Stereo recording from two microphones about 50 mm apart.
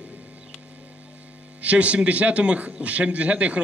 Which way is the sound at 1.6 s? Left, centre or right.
Right.